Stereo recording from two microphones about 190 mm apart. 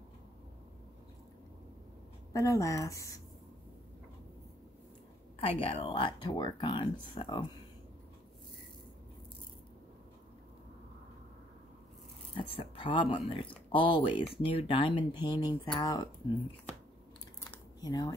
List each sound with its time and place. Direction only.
2.3 s speech: 15° left (ahead or behind)
5.4 s speech: 30° left (ahead or behind)
12.4 s speech: 30° left (ahead or behind)
17.4 s a sound: 20° left (ahead or behind)